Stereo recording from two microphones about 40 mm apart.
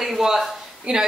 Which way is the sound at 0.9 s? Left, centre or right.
Right.